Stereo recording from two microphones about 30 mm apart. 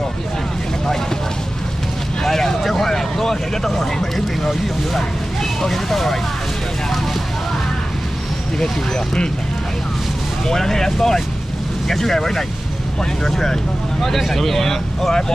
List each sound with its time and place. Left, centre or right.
2.2 s vehicle: centre
4.5 s speech: centre
8.5 s speech: left
10.4 s speech: centre